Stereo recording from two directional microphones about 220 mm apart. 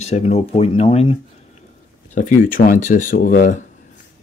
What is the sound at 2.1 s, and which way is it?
Speech, 40° left (ahead or behind).